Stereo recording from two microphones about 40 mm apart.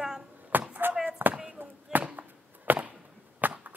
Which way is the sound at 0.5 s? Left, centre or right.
Right.